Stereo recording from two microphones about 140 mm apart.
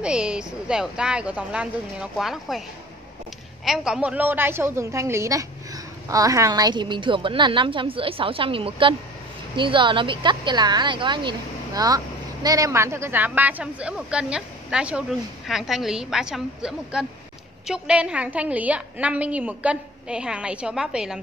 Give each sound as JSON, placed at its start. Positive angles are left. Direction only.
{"t": 0.0, "sound": "a woman's voice", "side_deg": -5}
{"t": 3.6, "sound": "a woman's voice", "side_deg": -5}